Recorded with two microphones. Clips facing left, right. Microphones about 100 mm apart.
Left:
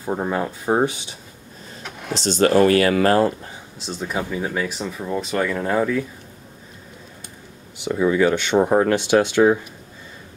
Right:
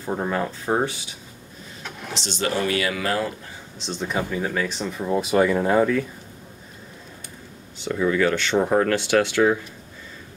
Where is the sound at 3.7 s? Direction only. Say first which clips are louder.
Even; 5° left (ahead or behind).